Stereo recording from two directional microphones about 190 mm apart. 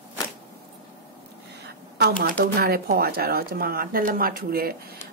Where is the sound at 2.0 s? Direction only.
50° right (ahead or behind).